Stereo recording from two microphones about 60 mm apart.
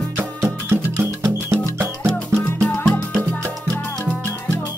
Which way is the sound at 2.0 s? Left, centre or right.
Centre.